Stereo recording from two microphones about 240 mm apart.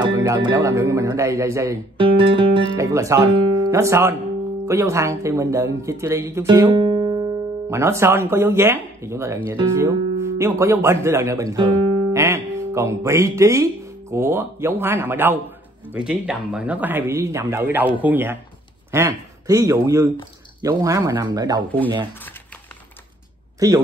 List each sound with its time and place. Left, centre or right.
0.0 s a man's voice: centre
23.6 s speech: centre